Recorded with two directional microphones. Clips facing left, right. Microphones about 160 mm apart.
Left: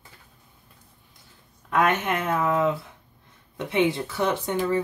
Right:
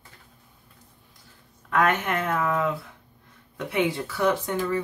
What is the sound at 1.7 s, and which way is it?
Speech, 20° left (ahead or behind).